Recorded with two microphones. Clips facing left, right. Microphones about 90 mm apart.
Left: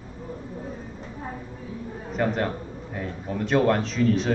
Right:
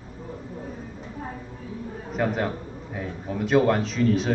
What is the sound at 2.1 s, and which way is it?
A man's voice, centre (ahead or behind).